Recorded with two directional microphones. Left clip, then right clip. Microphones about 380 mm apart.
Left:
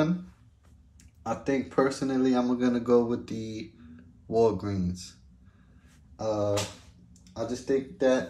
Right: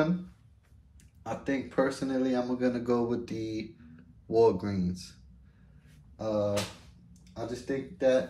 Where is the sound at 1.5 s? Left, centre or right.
Left.